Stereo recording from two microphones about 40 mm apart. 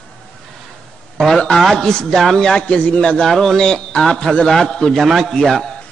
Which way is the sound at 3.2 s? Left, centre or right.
Centre.